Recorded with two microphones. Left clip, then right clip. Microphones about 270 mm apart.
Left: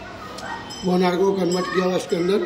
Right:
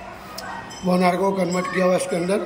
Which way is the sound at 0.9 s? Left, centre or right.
Centre.